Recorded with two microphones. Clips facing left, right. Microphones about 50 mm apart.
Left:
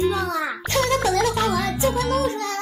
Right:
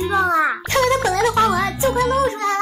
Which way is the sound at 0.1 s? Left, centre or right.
Right.